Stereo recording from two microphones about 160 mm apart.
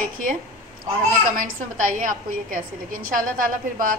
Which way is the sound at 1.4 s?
55° right (ahead or behind).